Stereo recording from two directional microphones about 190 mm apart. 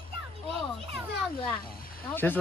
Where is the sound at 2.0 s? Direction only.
10° left (ahead or behind).